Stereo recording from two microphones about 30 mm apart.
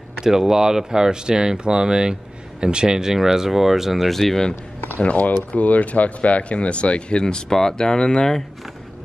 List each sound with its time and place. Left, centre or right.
0.2 s speech: right
3.0 s speech: centre
4.1 s speech: centre
5.0 s speech: left